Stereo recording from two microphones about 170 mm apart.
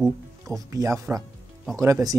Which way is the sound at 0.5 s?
20° right (ahead or behind).